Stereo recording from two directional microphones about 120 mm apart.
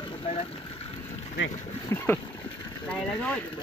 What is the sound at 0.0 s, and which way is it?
Vehicle, 50° left (ahead or behind).